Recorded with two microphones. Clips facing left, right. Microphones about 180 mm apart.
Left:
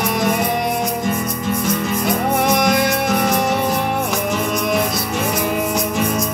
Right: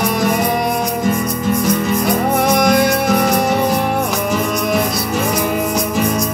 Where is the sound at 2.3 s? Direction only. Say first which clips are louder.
Right 3 dB; 40° right (ahead or behind).